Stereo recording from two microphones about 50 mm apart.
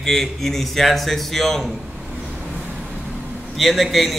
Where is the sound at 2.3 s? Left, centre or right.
Centre.